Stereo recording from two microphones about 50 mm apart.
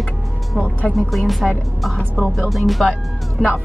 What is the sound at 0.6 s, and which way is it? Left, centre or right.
Speech, left.